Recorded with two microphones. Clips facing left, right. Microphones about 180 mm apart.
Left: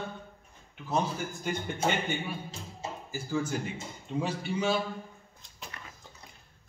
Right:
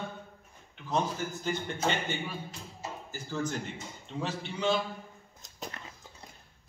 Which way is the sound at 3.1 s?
10° left (ahead or behind).